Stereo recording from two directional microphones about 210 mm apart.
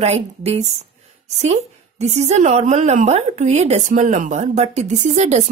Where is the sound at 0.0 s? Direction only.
30° right (ahead or behind).